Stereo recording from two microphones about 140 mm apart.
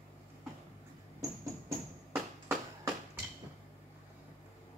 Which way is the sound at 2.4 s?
20° right (ahead or behind).